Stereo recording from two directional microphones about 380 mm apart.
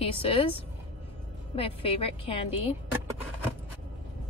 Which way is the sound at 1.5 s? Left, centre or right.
Centre.